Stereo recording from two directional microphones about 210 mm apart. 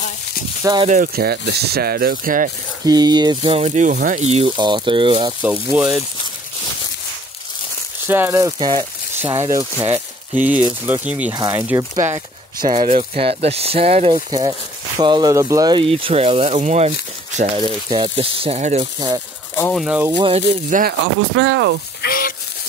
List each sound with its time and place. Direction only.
0.8 s speech: 40° right (ahead or behind)
2.8 s speech: 20° right (ahead or behind)
5.4 s speech: 10° right (ahead or behind)
8.1 s speech: 10° right (ahead or behind)
12.8 s speech: 30° right (ahead or behind)
17.6 s speech: 20° right (ahead or behind)
18.9 s speech: 20° right (ahead or behind)
19.5 s speech: 5° left (ahead or behind)
20.2 s speech: 30° right (ahead or behind)
20.8 s speech: 60° right (ahead or behind)
22.0 s a sound: 45° left (ahead or behind)